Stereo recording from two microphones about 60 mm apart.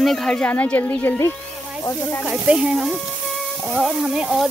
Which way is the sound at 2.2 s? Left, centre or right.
Centre.